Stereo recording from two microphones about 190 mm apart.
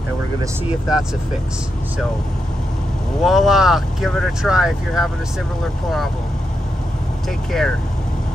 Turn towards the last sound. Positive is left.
turn(degrees=0)  # may be behind; listen again after turning